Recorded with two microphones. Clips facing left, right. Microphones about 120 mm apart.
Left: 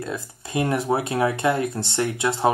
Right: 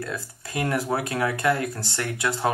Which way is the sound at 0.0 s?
20° left (ahead or behind).